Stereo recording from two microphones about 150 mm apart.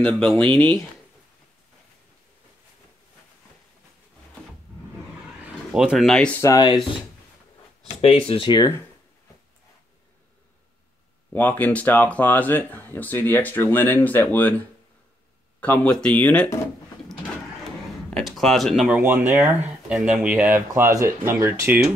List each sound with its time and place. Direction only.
0.0 s speech: 5° left (ahead or behind)
5.7 s speech: 5° right (ahead or behind)
6.4 s speech: 25° left (ahead or behind)
8.0 s speech: 40° left (ahead or behind)
8.5 s speech: 25° left (ahead or behind)
11.3 s speech: 10° left (ahead or behind)
15.6 s speech: 10° left (ahead or behind)
18.1 s speech: centre (ahead or behind); by 19.5 s 15° right (ahead or behind)
19.9 s speech: 5° right (ahead or behind)